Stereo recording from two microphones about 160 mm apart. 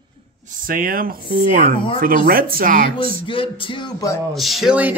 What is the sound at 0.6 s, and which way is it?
Speech, 60° right (ahead or behind).